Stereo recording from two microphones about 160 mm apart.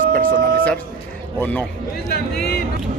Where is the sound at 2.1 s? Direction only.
75° left (ahead or behind).